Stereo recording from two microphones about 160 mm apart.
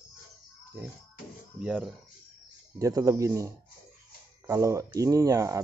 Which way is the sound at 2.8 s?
20° right (ahead or behind).